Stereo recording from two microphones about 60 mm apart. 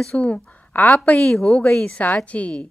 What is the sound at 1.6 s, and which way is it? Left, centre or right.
A woman's voice, left.